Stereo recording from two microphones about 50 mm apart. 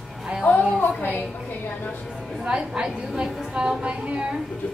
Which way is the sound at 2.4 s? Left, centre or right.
Centre.